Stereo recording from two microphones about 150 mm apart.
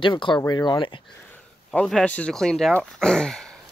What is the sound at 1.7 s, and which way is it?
Speech, 5° left (ahead or behind).